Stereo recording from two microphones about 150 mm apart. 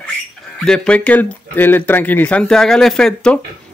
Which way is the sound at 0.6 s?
5° left (ahead or behind).